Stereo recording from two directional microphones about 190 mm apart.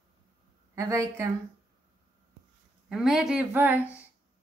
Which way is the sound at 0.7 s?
15° right (ahead or behind).